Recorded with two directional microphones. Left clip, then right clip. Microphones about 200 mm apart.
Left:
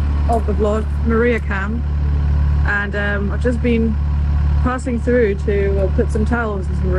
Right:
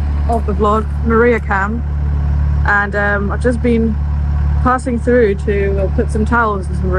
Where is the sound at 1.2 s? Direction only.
10° right (ahead or behind).